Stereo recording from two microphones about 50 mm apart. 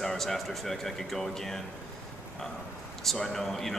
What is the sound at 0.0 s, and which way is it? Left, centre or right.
A man's voice, centre.